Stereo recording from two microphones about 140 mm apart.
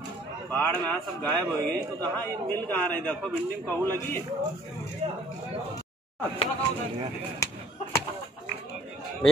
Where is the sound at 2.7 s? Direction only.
10° left (ahead or behind).